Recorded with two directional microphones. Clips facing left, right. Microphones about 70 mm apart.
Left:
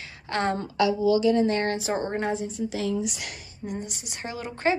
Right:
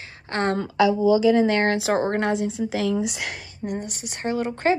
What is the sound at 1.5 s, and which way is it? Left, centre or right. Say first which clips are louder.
A woman's voice: right 5 dB; right.